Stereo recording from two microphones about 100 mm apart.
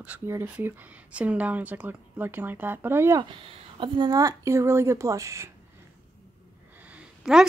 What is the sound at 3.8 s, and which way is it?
Speech, 45° right (ahead or behind).